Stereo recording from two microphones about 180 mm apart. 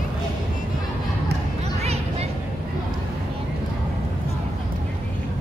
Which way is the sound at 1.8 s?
35° right (ahead or behind).